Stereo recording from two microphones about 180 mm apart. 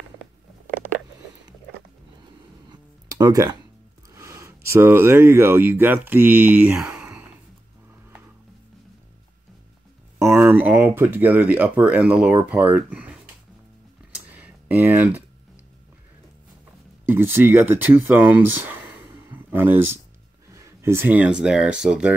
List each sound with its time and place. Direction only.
0.7 s mechanisms: 10° right (ahead or behind)
2.7 s music: 20° right (ahead or behind)
4.1 s speech: 15° right (ahead or behind)
10.1 s speech: 15° right (ahead or behind)
14.1 s computer keyboard: 10° right (ahead or behind)
17.0 s speech: 10° right (ahead or behind)